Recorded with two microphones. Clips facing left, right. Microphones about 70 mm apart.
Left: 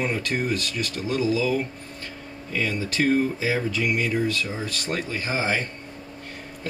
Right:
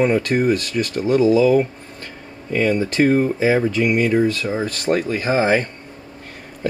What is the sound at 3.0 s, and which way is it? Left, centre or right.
Speech, right.